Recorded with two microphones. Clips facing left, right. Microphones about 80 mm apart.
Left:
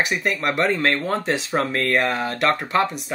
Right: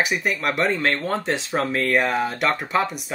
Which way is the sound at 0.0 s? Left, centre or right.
Centre.